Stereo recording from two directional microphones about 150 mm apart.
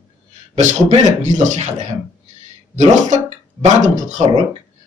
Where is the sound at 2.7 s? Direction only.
50° right (ahead or behind).